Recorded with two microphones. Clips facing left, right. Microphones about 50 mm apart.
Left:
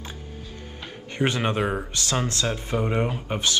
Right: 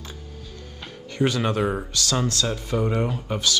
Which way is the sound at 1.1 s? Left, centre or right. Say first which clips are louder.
Right 1 dB; left.